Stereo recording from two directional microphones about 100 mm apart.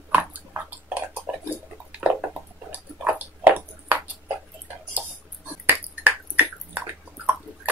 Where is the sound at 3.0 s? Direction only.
20° right (ahead or behind).